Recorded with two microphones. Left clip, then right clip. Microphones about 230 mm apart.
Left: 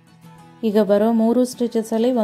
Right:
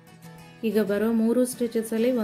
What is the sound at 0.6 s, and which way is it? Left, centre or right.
Speech, left.